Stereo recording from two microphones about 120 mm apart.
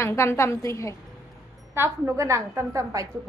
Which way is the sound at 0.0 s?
20° left (ahead or behind).